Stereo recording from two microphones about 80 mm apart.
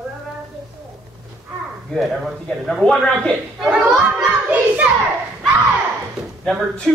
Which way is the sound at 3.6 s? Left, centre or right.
Centre.